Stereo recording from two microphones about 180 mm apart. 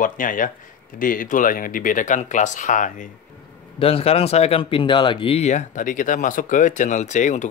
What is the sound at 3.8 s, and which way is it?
Speech, 35° left (ahead or behind).